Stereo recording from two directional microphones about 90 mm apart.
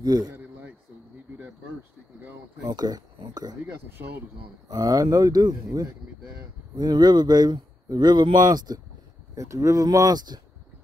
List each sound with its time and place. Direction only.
0.0 s speech: 45° right (ahead or behind)
2.6 s speech: 45° right (ahead or behind)
4.6 s speech: 40° right (ahead or behind)
6.8 s speech: 50° right (ahead or behind)
9.3 s speech: 35° right (ahead or behind)